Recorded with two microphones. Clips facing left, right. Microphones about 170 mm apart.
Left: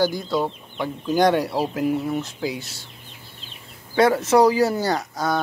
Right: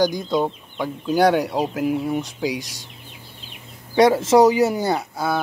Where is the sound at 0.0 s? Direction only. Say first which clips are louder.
Right 2 dB; 20° right (ahead or behind).